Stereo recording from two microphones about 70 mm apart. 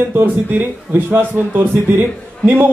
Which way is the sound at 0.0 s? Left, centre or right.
Right.